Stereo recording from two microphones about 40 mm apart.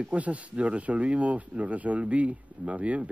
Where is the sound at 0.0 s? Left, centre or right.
Right.